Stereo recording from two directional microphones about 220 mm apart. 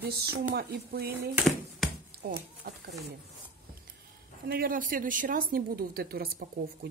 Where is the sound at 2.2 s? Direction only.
45° right (ahead or behind).